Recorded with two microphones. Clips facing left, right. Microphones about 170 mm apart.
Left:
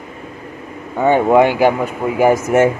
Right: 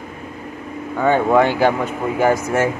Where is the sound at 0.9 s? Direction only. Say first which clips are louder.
Left 3 dB; 15° left (ahead or behind).